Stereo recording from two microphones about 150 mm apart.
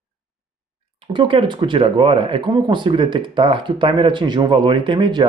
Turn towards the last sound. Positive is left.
turn(degrees=-30)  # may be behind; listen again after turning